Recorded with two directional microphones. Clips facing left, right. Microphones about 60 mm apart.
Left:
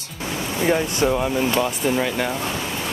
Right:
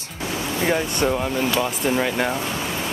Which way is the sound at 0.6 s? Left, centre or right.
Centre.